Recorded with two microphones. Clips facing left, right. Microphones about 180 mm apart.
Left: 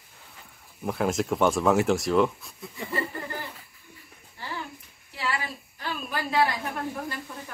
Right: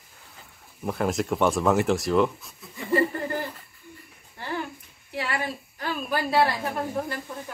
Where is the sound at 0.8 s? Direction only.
Centre (ahead or behind).